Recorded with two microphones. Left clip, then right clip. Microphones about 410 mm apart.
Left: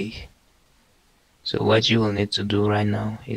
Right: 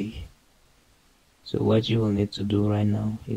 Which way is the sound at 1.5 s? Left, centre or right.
Left.